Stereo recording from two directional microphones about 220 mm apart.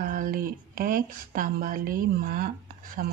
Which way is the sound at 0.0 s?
40° right (ahead or behind).